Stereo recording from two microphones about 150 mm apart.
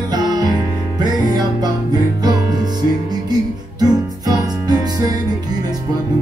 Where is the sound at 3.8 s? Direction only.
25° right (ahead or behind).